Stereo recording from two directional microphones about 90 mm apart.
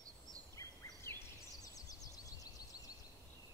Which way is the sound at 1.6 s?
40° left (ahead or behind).